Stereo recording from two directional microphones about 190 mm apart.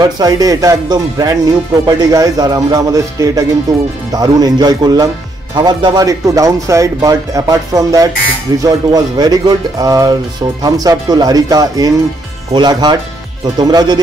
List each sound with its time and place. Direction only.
0.0 s speech: 20° right (ahead or behind)